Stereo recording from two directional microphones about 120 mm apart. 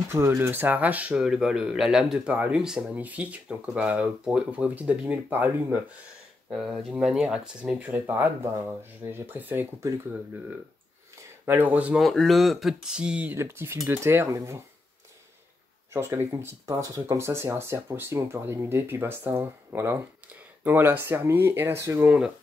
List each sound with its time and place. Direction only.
0.1 s speech: 20° right (ahead or behind)
11.4 s speech: 15° right (ahead or behind)
12.0 s speech: 5° left (ahead or behind); by 14.6 s 25° right (ahead or behind)
15.9 s speech: 20° right (ahead or behind)